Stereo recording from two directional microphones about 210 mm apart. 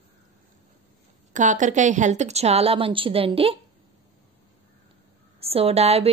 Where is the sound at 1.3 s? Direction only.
35° right (ahead or behind).